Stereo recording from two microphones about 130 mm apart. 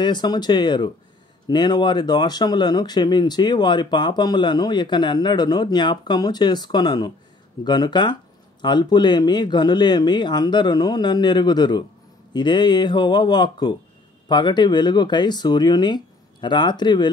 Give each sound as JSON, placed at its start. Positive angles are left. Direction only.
{"t": 0.0, "sound": "speech", "side_deg": 35}